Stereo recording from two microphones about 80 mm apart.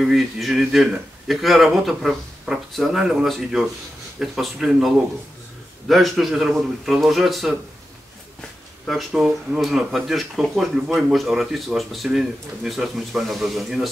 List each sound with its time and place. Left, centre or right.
0.0 s speech: centre
8.8 s speech: centre